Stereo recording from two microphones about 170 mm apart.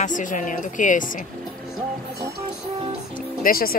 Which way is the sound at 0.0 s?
50° left (ahead or behind).